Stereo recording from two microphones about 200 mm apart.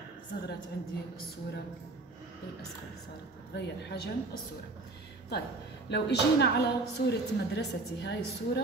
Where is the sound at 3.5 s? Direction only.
55° left (ahead or behind).